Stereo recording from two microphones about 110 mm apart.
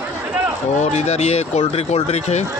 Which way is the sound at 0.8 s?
90° left.